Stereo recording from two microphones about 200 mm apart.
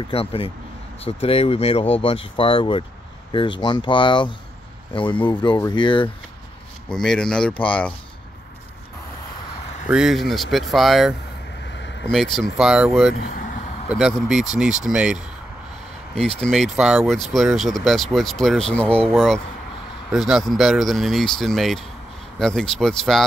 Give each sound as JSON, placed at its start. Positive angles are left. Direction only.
{"t": 0.1, "sound": "speech", "side_deg": 30}
{"t": 6.9, "sound": "speech", "side_deg": 5}
{"t": 9.8, "sound": "speech", "side_deg": -5}
{"t": 13.1, "sound": "speech", "side_deg": 50}
{"t": 13.8, "sound": "speech", "side_deg": 0}
{"t": 16.2, "sound": "speech", "side_deg": 5}